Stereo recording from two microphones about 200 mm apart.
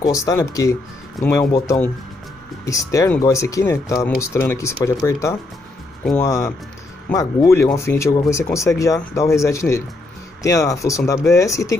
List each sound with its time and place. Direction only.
0.0 s speech: 15° left (ahead or behind)
1.2 s speech: centre (ahead or behind)
1.5 s speech: 15° left (ahead or behind)